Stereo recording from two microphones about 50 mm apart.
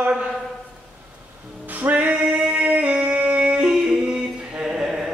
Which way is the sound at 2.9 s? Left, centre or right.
Right.